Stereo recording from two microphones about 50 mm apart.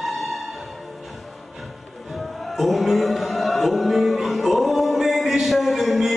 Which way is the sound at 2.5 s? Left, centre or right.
Centre.